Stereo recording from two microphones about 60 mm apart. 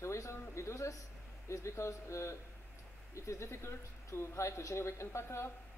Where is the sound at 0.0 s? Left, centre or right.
Left.